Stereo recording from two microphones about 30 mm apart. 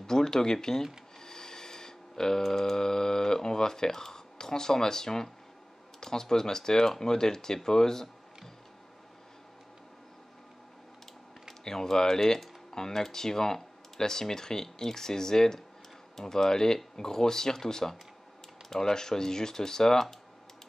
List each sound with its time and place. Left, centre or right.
0.0 s speech: centre
1.2 s a sound: left
5.9 s speech: centre
11.6 s speech: centre